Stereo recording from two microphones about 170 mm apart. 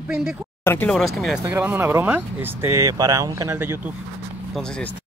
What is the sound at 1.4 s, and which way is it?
Speech, 15° right (ahead or behind).